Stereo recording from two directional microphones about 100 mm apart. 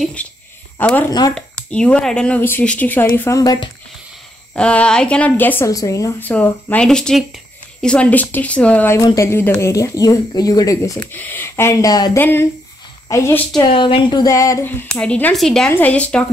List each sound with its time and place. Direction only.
0.2 s speech: 15° left (ahead or behind)
4.6 s speech: 10° left (ahead or behind)
5.7 s speech: 35° left (ahead or behind)
6.2 s speech: 15° left (ahead or behind)
9.0 s speech: 30° left (ahead or behind)
9.7 s speech: 35° left (ahead or behind)
11.1 s speech: 20° left (ahead or behind); by 12.2 s 35° left (ahead or behind)
12.2 s speech: 20° left (ahead or behind)
13.1 s a woman's voice: 35° left (ahead or behind)
13.7 s speech: 60° left (ahead or behind)
14.2 s speech: 35° left (ahead or behind)
14.6 s a woman's voice: 15° left (ahead or behind)
15.7 s speech: 15° left (ahead or behind)